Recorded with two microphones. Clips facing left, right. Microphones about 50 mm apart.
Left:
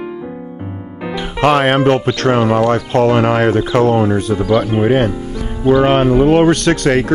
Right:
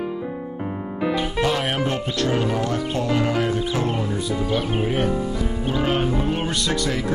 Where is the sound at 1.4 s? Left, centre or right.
Left.